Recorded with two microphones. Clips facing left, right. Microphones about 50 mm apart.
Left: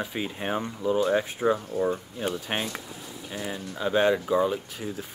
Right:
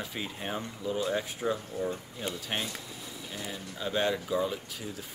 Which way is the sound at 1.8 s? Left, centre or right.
Left.